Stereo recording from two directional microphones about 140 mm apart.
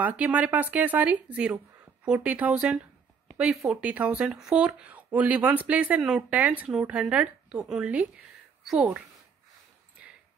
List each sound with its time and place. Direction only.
0.0 s speech: 10° right (ahead or behind)